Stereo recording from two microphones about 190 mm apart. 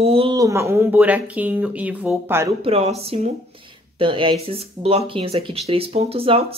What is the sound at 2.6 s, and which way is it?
Speech, 30° right (ahead or behind).